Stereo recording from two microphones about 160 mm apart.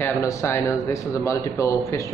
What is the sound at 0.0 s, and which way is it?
A man's voice, 20° left (ahead or behind).